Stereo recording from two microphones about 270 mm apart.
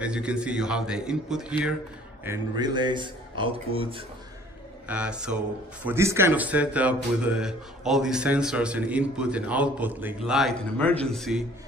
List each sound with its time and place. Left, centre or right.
0.0 s speech: centre
2.2 s a man's voice: centre
4.8 s speech: centre